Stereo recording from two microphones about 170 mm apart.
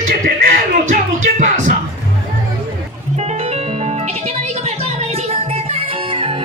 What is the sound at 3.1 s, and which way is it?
Music, 40° right (ahead or behind).